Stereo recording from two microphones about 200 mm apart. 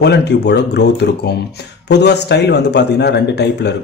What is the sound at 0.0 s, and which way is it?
A man's voice, 60° left (ahead or behind).